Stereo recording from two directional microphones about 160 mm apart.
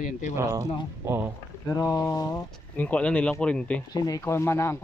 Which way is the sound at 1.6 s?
20° left (ahead or behind).